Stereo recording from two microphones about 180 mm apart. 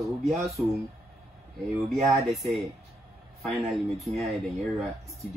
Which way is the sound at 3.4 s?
35° right (ahead or behind).